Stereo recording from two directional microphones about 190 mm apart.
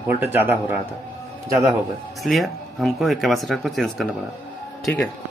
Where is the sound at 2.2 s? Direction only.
Centre (ahead or behind).